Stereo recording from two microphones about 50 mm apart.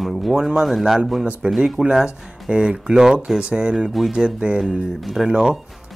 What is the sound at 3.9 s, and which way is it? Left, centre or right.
Speech, centre.